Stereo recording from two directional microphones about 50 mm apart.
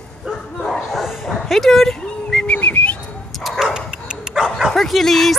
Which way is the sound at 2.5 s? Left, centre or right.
Left.